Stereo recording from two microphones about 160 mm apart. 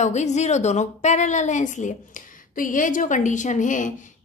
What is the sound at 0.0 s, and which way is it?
A woman's voice, 45° left (ahead or behind).